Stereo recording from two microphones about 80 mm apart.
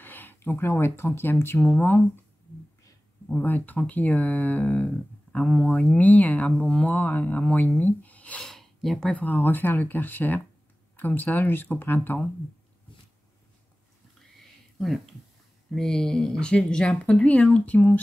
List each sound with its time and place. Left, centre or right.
0.0 s speech: left
1.6 s speech: left
3.3 s speech: left
5.7 s speech: centre
8.4 s a sound: centre
9.1 s speech: left
14.2 s a sound: centre
15.7 s speech: centre